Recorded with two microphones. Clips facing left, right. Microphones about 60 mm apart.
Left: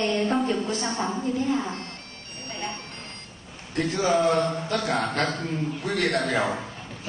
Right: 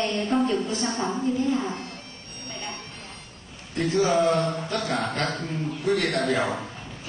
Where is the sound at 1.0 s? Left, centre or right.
Centre.